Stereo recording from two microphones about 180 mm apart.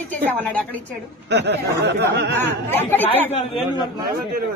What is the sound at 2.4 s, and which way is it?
Speech, 10° left (ahead or behind).